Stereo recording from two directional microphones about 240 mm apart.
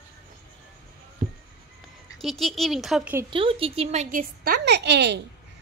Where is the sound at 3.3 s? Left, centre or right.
Right.